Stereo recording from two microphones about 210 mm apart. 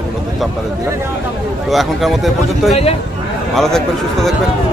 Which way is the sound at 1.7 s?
Centre (ahead or behind).